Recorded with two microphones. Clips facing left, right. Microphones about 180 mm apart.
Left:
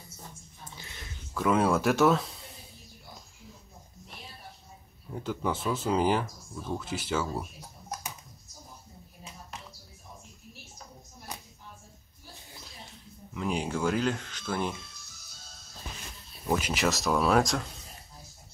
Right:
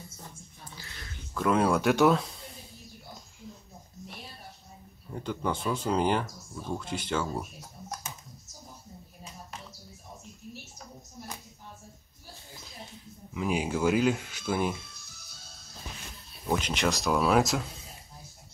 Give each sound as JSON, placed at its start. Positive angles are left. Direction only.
{"t": 0.7, "sound": "dog", "side_deg": 20}
{"t": 1.3, "sound": "speech", "side_deg": 5}
{"t": 5.1, "sound": "speech", "side_deg": 5}
{"t": 13.3, "sound": "speech", "side_deg": -5}
{"t": 16.4, "sound": "speech", "side_deg": 5}